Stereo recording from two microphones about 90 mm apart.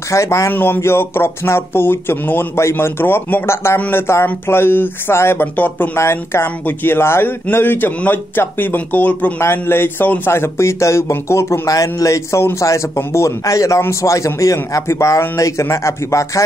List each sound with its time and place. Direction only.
0.1 s speech: 35° left (ahead or behind)
0.5 s speech: 25° left (ahead or behind)